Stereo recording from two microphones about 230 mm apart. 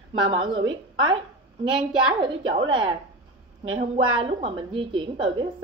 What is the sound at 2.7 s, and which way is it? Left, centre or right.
A woman's voice, right.